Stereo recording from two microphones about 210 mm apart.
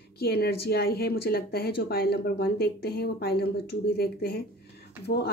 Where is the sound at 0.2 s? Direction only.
50° left (ahead or behind).